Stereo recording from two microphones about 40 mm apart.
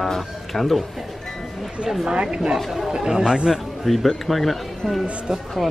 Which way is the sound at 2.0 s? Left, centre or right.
Right.